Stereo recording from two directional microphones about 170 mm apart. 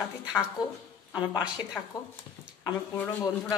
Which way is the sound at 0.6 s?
25° left (ahead or behind).